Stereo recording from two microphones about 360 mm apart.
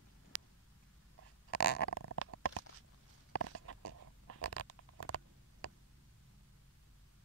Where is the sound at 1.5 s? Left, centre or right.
Left.